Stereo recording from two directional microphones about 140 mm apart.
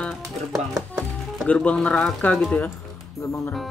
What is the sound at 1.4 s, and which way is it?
Speech, 10° left (ahead or behind).